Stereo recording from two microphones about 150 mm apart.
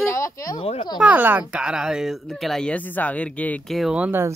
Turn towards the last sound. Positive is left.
turn(degrees=-10)  # may be behind; listen again after turning